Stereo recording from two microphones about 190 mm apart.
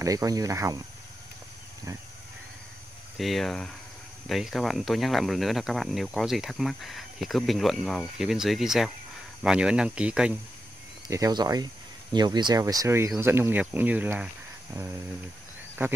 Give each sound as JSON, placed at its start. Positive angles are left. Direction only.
{"t": 0.0, "sound": "speech", "side_deg": -15}
{"t": 3.2, "sound": "speech", "side_deg": 0}
{"t": 11.1, "sound": "speech", "side_deg": -15}